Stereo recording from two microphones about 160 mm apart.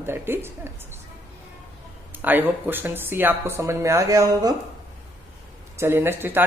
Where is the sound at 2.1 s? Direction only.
10° right (ahead or behind).